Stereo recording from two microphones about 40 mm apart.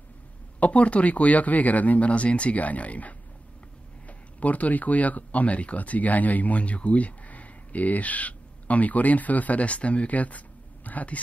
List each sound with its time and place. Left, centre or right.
0.6 s speech: left
4.4 s speech: left